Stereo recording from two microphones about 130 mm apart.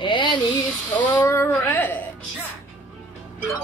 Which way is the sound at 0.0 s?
35° left (ahead or behind).